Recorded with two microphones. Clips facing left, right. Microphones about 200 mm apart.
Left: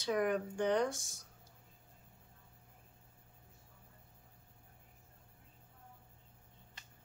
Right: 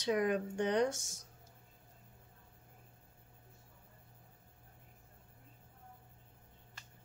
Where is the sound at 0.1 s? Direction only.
20° right (ahead or behind).